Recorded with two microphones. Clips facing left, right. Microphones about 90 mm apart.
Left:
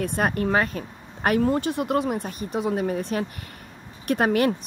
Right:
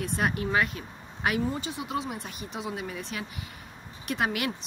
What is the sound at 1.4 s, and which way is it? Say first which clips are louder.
Speech: left 9 dB; 60° left (ahead or behind).